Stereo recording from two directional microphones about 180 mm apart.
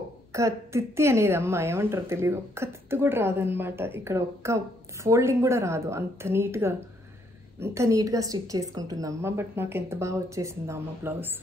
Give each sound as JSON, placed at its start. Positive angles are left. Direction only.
{"t": 0.3, "sound": "a woman's voice", "side_deg": -15}